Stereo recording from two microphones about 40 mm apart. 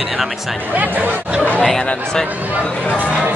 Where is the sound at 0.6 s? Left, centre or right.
Right.